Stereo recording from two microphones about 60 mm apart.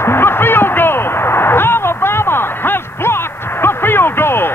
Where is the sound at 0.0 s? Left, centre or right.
Left.